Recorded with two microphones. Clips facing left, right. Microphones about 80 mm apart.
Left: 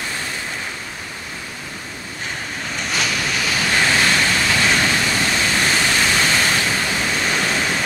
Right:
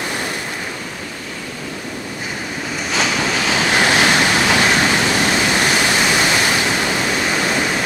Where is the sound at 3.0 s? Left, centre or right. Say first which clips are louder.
Right 5 dB; right.